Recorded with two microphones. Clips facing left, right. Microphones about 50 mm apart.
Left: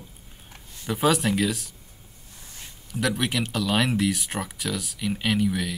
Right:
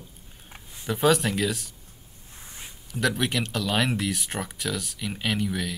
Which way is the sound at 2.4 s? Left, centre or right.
Centre.